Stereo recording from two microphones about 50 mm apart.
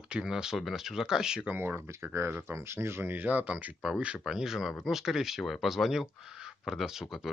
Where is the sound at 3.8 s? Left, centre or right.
Right.